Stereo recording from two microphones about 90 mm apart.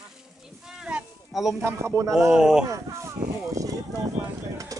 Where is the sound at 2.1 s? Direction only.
10° right (ahead or behind).